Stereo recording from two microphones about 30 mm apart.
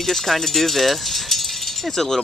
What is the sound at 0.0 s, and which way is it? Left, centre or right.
Speech, centre.